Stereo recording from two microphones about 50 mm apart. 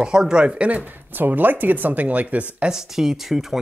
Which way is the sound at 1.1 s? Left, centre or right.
Right.